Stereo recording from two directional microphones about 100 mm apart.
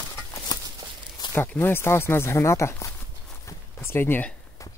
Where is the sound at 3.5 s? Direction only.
25° left (ahead or behind).